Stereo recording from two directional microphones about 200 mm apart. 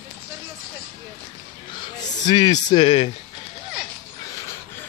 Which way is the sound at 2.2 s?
20° left (ahead or behind).